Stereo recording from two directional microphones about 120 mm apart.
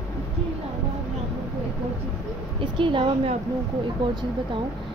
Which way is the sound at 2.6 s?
45° right (ahead or behind).